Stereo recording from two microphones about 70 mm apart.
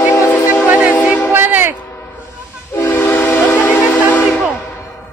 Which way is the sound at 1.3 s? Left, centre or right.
Right.